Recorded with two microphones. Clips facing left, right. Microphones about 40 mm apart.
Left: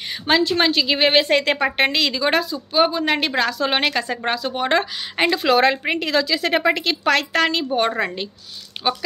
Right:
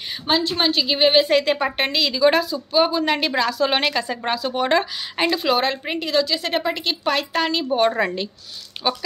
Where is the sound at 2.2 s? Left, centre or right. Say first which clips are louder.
Right 3 dB; left.